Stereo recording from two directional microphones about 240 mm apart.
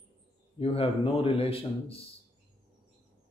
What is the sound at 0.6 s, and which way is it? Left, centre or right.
Speech, left.